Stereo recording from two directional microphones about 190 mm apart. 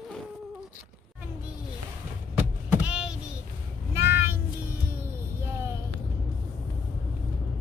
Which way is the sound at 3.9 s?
10° right (ahead or behind).